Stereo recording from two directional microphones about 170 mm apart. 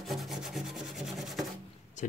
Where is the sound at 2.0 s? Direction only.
45° left (ahead or behind).